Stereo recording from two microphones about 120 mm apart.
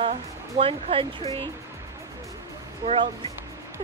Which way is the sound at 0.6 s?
50° right (ahead or behind).